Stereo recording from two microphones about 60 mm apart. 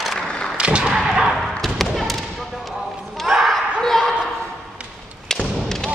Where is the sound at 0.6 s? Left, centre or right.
Centre.